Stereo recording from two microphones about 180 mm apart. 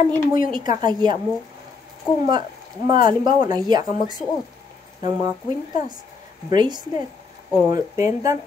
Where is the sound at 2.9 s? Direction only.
25° right (ahead or behind).